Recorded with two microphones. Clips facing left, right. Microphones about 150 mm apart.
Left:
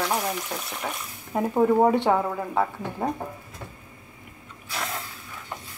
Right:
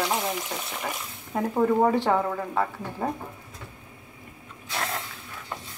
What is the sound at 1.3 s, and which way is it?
Speech, 20° left (ahead or behind).